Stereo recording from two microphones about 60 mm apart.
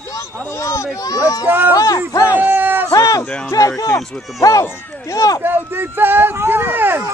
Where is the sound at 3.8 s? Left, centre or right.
Left.